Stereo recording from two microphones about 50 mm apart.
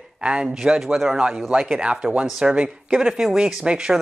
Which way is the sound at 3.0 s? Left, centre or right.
Centre.